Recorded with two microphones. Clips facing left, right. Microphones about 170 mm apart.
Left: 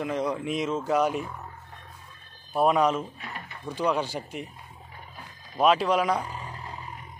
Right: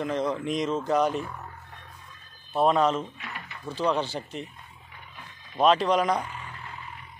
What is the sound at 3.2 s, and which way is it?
Mechanisms, 35° left (ahead or behind).